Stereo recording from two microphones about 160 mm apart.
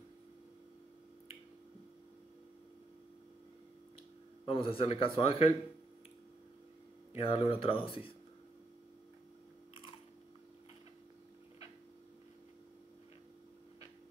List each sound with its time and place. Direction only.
4.5 s speech: 35° left (ahead or behind)
7.2 s speech: 35° left (ahead or behind)